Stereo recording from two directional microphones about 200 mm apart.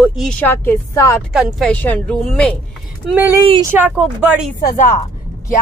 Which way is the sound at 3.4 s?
25° right (ahead or behind).